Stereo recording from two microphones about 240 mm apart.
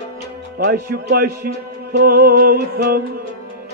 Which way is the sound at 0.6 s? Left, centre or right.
Right.